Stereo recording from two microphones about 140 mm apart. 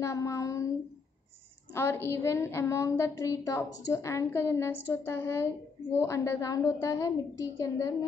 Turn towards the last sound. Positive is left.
turn(degrees=25)  # may be behind; listen again after turning